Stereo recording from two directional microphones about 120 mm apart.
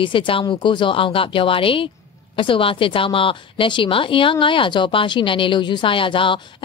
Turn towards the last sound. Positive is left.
turn(degrees=45)  # may be behind; listen again after turning